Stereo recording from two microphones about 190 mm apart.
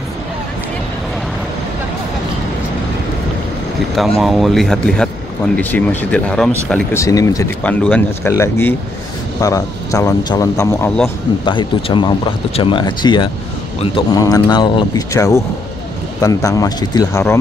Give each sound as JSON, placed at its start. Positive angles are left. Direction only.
{"t": 4.2, "sound": "a man's voice", "side_deg": 0}
{"t": 7.6, "sound": "a man's voice", "side_deg": 5}